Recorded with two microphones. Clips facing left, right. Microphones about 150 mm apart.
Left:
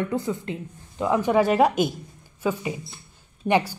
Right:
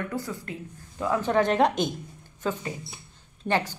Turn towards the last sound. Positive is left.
turn(degrees=15)  # may be behind; listen again after turning